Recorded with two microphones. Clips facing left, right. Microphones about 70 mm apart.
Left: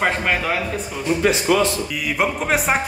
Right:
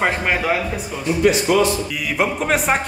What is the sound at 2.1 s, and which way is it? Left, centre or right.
Speech, centre.